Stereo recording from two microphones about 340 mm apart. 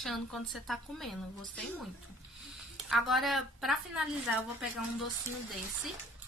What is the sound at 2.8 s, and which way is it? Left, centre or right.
Speech, centre.